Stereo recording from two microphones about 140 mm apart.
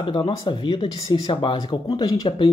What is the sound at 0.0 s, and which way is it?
Speech, 35° left (ahead or behind).